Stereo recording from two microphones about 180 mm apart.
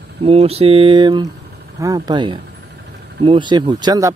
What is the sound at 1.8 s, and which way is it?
A man's voice, 20° right (ahead or behind).